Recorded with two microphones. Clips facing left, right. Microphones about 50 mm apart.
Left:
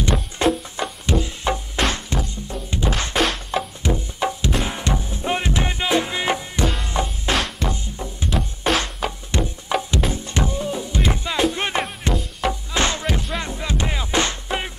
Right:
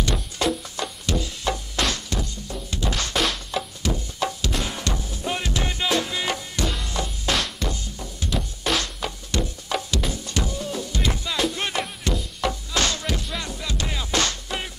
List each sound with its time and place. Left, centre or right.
0.0 s music: left
3.2 s music: centre
3.8 s music: left
7.3 s music: centre
7.7 s music: left
12.1 s music: centre
12.4 s music: left